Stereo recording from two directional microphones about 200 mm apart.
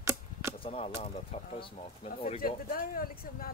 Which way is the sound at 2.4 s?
45° left (ahead or behind).